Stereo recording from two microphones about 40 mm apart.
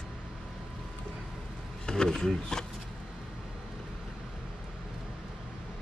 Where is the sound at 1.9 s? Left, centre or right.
Centre.